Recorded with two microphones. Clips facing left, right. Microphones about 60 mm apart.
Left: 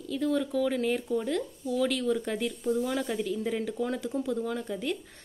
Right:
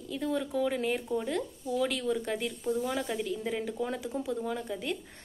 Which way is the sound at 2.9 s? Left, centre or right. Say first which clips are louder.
Left 2 dB; centre.